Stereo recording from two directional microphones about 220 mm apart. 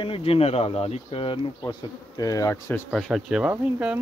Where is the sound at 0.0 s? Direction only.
25° left (ahead or behind).